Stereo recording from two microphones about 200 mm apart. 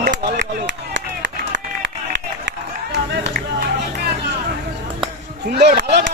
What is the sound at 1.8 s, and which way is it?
Run, 60° right (ahead or behind).